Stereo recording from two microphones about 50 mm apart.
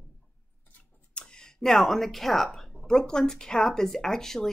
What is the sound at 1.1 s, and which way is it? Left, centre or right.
A woman's voice, centre.